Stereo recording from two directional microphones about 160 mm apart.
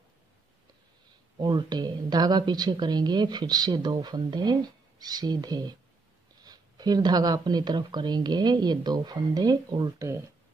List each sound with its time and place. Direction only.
1.4 s a woman's voice: 30° right (ahead or behind)